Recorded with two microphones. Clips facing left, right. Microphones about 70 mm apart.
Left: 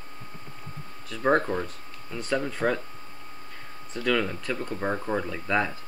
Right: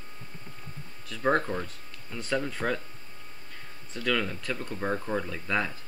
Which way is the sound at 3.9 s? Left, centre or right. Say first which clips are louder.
Left 3 dB; centre.